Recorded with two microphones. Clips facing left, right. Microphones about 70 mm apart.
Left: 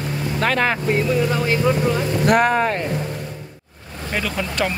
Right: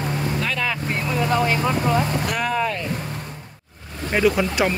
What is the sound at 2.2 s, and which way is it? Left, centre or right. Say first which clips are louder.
Speech: left 8 dB; left.